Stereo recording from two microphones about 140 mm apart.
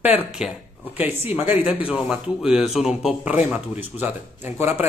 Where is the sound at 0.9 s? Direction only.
15° right (ahead or behind).